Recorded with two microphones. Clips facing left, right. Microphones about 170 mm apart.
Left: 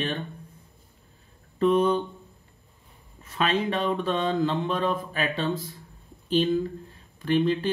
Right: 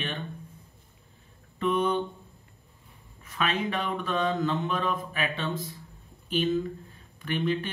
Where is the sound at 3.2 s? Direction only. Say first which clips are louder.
Left 4 dB; 30° left (ahead or behind).